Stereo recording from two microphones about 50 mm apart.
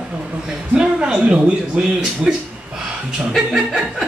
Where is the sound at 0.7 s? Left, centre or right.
Centre.